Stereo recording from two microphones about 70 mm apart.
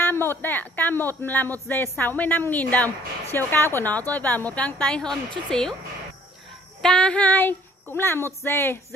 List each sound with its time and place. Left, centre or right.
0.1 s a man's voice: left; by 5.8 s centre
6.8 s a man's voice: centre; by 8.7 s left